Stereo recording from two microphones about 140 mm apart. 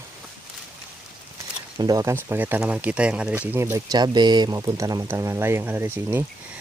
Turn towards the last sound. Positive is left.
turn(degrees=-15)  # may be behind; listen again after turning